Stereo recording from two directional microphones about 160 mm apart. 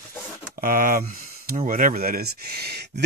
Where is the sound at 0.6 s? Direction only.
60° right (ahead or behind).